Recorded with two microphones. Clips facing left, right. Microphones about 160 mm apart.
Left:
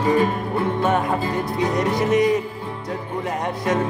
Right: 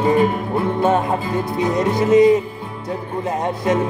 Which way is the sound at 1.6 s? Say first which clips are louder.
Right 3 dB; 25° right (ahead or behind).